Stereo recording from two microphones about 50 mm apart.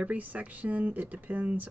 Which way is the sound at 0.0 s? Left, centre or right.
Right.